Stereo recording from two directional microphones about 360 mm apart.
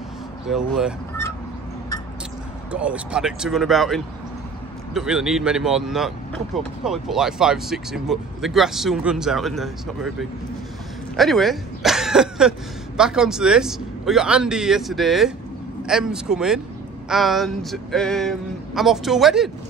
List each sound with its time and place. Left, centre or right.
0.5 s speech: centre
2.7 s speech: centre
11.1 s speech: centre